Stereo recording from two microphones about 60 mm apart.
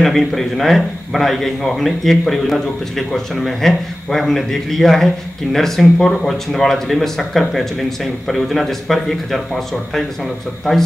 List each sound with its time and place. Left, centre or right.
0.0 s a man's voice: centre